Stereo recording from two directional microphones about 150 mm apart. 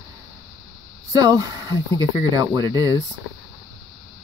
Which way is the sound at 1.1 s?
25° right (ahead or behind).